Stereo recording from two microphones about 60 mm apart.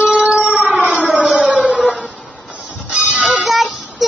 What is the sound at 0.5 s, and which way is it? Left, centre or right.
Siren, centre.